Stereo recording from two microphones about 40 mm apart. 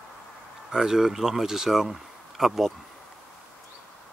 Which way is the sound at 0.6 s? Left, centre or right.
Centre.